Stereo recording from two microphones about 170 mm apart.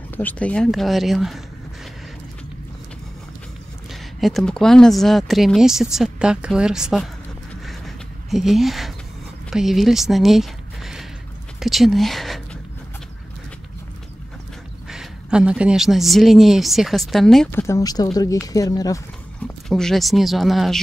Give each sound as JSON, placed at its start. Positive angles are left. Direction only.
{"t": 0.1, "sound": "speech", "side_deg": 10}
{"t": 3.9, "sound": "speech", "side_deg": 0}
{"t": 7.6, "sound": "a sound", "side_deg": 0}
{"t": 9.5, "sound": "speech", "side_deg": 0}
{"t": 11.6, "sound": "a sound", "side_deg": 0}
{"t": 14.9, "sound": "speech", "side_deg": -5}
{"t": 17.5, "sound": "speech", "side_deg": 15}
{"t": 19.4, "sound": "speech", "side_deg": 5}